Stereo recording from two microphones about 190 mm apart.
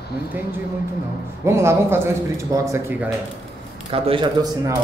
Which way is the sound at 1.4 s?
15° right (ahead or behind).